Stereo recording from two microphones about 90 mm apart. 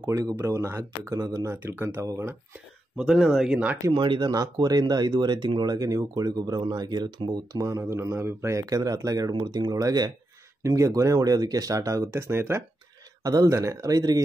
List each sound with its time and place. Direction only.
0.0 s speech: 40° right (ahead or behind)
3.0 s speech: 5° right (ahead or behind)
3.9 s speech: 60° right (ahead or behind)
7.5 s speech: 40° right (ahead or behind)
13.2 s speech: 45° right (ahead or behind)